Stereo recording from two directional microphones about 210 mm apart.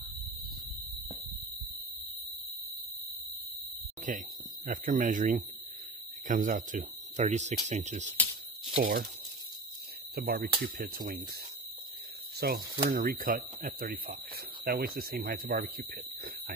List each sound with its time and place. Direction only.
4.1 s speech: 40° right (ahead or behind)
10.1 s speech: 50° right (ahead or behind)
12.4 s speech: 50° right (ahead or behind)